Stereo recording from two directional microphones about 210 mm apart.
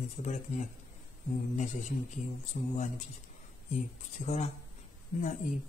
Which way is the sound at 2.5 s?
35° left (ahead or behind).